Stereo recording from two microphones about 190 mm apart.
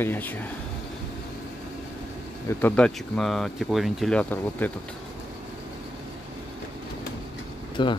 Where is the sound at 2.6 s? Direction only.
5° left (ahead or behind).